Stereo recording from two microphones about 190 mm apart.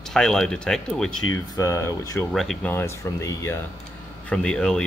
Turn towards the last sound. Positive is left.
turn(degrees=5)  # may be behind; listen again after turning